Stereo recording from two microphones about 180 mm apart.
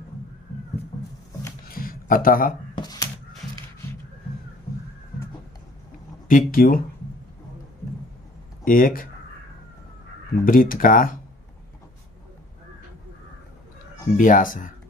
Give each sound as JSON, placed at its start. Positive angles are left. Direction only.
{"t": 1.7, "sound": "a sound", "side_deg": 55}
{"t": 2.7, "sound": "a sound", "side_deg": 20}
{"t": 6.2, "sound": "speech", "side_deg": 50}
{"t": 8.6, "sound": "speech", "side_deg": 50}
{"t": 10.4, "sound": "speech", "side_deg": 50}
{"t": 14.1, "sound": "speech", "side_deg": 45}